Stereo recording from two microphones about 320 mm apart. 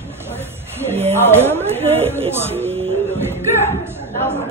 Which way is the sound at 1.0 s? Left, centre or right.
Centre.